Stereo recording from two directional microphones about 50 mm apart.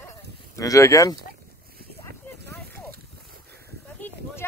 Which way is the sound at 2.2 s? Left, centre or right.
Left.